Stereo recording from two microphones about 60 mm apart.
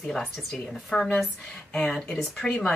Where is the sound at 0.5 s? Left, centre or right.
Centre.